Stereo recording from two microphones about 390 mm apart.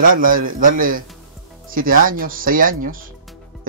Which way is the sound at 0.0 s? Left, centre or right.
Right.